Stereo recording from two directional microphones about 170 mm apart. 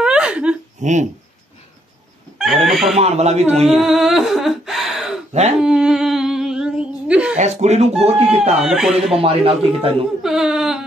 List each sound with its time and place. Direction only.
0.0 s laughter: 5° right (ahead or behind)
0.7 s speech: 45° right (ahead or behind)
2.3 s speech: centre (ahead or behind)
3.0 s a man's voice: 40° right (ahead or behind)
3.6 s a sound: centre (ahead or behind)
5.3 s speech: 40° right (ahead or behind)
5.6 s humming: 5° right (ahead or behind)
7.3 s speech: 40° right (ahead or behind)
8.5 s speech: centre (ahead or behind)
9.2 s a man's voice: 35° right (ahead or behind)
10.2 s a sound: centre (ahead or behind)